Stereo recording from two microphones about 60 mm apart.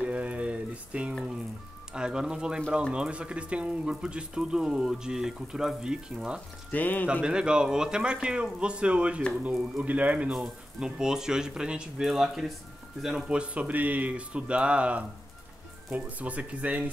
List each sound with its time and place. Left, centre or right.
0.0 s a sound: right
2.0 s speech: centre
6.7 s speech: left
7.1 s speech: centre
10.3 s speech: centre; by 16.9 s right